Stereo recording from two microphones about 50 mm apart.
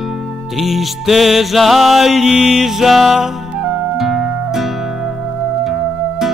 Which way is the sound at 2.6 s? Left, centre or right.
Centre.